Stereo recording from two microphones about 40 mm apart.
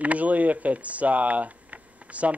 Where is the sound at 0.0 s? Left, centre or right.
Right.